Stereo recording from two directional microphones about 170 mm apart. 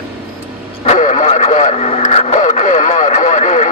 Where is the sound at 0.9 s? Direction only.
45° left (ahead or behind).